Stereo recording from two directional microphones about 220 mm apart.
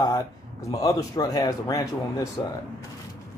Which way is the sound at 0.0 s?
15° left (ahead or behind).